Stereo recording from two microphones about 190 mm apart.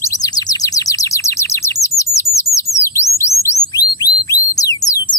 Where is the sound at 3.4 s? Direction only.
20° left (ahead or behind).